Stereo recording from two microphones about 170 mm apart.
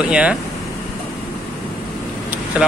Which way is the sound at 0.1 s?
5° right (ahead or behind).